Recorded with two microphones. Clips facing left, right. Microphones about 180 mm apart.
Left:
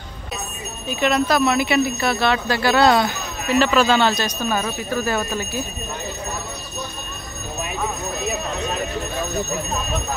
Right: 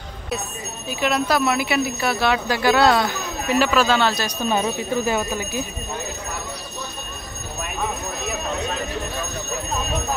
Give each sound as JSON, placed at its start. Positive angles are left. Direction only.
{"t": 0.8, "sound": "speech", "side_deg": -5}
{"t": 4.4, "sound": "speech", "side_deg": -20}